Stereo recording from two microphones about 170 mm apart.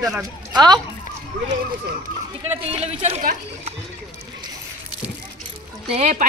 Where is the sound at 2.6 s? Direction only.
35° right (ahead or behind).